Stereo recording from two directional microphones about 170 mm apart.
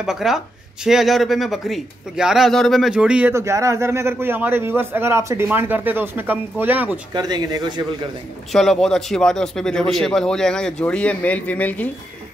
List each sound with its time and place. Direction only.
0.0 s speech: centre (ahead or behind)
3.3 s a man's voice: 20° right (ahead or behind)
7.2 s speech: 25° right (ahead or behind)
8.5 s speech: centre (ahead or behind)